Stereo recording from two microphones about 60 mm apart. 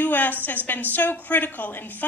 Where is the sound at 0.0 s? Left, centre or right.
Left.